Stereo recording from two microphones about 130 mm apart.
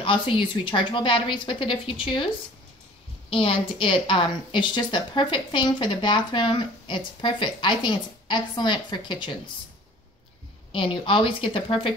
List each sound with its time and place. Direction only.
0.0 s a woman's voice: 40° left (ahead or behind)
3.3 s a woman's voice: 45° left (ahead or behind)
10.7 s a woman's voice: 40° left (ahead or behind)